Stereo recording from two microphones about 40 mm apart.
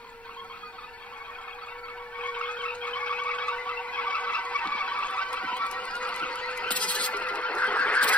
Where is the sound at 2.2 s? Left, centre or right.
Left.